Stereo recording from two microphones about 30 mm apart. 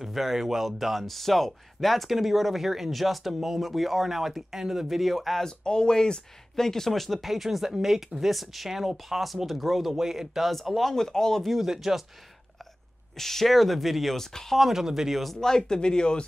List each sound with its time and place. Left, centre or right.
0.0 s speech: centre
4.8 s speech: centre
5.6 s speech: left
6.5 s speech: centre
8.3 s speech: centre
10.4 s speech: centre
11.6 s speech: centre
13.2 s speech: centre
14.1 s speech: centre
14.6 s speech: centre
15.4 s speech: centre